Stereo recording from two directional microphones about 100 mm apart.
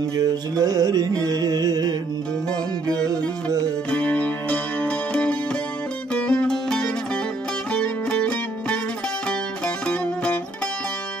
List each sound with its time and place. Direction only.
0.1 s music: 40° right (ahead or behind)
3.4 s music: 40° right (ahead or behind)
3.9 s music: 15° left (ahead or behind)
9.8 s music: 15° left (ahead or behind)